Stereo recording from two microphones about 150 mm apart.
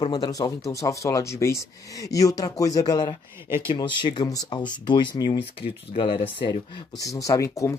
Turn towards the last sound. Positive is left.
turn(degrees=20)  # may be behind; listen again after turning